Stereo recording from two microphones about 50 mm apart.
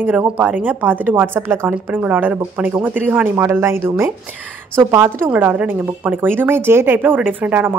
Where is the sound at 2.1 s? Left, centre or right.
Right.